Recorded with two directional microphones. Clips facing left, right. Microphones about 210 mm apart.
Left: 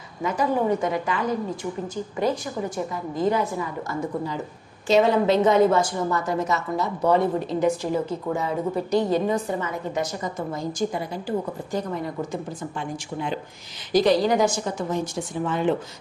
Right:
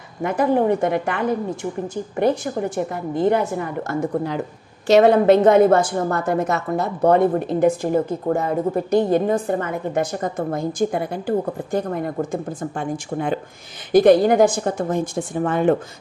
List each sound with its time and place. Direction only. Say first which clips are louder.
0.2 s a woman's voice: right 5 dB; 60° right (ahead or behind)
4.8 s a woman's voice: right 6 dB; 65° right (ahead or behind)